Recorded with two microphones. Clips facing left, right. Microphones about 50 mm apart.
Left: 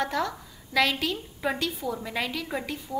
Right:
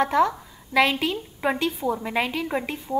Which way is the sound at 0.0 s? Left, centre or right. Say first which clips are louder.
Right 8 dB; right.